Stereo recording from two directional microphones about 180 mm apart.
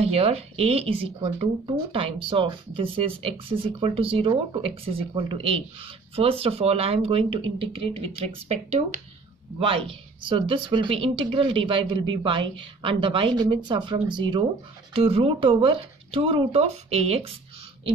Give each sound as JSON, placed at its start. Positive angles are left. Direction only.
{"t": 0.0, "sound": "a woman's voice", "side_deg": -35}